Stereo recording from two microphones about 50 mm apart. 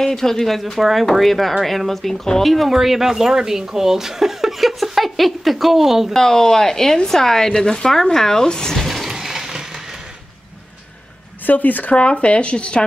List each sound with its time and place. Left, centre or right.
0.0 s speech: centre
6.1 s speech: centre
9.1 s vehicle: centre
11.4 s speech: left
12.0 s speech: left